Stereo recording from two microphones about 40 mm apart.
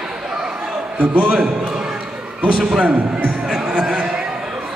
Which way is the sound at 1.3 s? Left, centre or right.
Centre.